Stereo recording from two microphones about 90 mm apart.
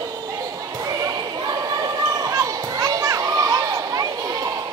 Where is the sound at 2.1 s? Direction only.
40° right (ahead or behind).